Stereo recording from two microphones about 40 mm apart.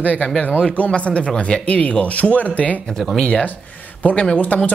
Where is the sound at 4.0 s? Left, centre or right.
Left.